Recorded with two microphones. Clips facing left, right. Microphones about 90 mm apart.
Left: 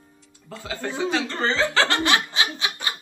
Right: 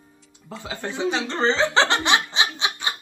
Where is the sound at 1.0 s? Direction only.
25° right (ahead or behind).